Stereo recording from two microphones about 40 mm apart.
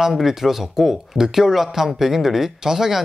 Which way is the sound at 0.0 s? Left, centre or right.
Centre.